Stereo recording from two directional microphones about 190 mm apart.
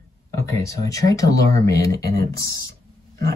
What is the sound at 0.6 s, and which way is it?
Speech, 15° left (ahead or behind).